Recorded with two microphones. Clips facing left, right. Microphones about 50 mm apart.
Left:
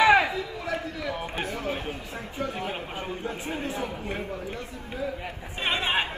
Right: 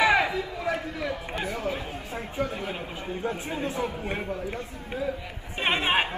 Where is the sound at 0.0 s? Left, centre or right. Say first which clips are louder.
Left 3 dB; left.